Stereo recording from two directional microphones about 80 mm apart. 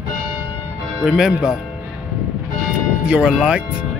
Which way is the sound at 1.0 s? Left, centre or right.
Centre.